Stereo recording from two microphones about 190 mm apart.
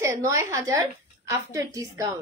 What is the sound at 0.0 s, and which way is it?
A woman's voice, 15° right (ahead or behind).